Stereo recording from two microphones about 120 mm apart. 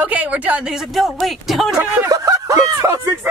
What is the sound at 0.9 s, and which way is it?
Speech, centre (ahead or behind).